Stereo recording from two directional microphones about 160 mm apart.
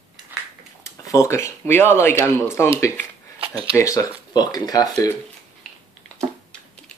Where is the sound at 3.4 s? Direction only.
35° right (ahead or behind).